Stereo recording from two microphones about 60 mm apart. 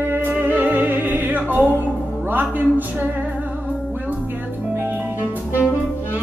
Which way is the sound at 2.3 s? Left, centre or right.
Right.